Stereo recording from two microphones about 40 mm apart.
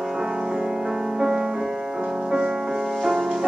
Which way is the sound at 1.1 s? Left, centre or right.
Centre.